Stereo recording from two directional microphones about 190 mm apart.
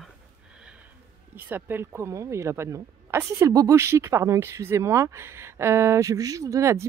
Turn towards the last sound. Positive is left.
turn(degrees=-15)  # may be behind; listen again after turning